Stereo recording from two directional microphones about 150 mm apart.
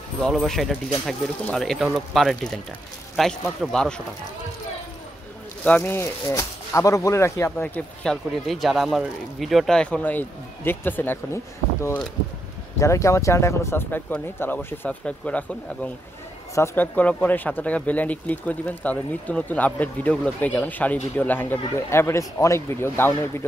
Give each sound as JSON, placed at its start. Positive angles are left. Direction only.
{"t": 0.2, "sound": "speech", "side_deg": 0}
{"t": 5.6, "sound": "speech", "side_deg": 10}
{"t": 12.7, "sound": "speech", "side_deg": 20}